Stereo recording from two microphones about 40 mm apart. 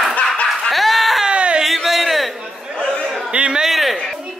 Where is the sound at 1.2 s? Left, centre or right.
Right.